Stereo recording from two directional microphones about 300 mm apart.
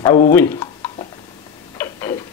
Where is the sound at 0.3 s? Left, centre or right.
Centre.